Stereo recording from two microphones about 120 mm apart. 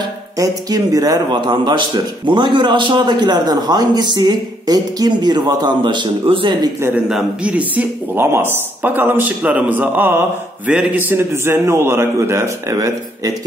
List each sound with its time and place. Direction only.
0.4 s a man's voice: 30° right (ahead or behind)
7.1 s a man's voice: 5° right (ahead or behind); by 13.3 s 30° right (ahead or behind)